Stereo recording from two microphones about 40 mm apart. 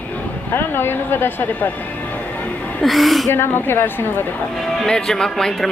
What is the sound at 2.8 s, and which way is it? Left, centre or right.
Speech, centre.